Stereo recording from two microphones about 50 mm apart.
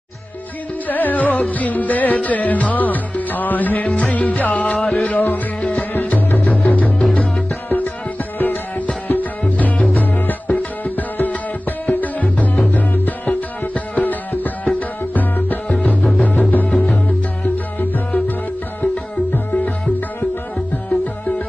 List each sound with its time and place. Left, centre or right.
0.8 s music: left; by 5.1 s centre
5.1 s music: left
8.4 s music: left
19.3 s music: left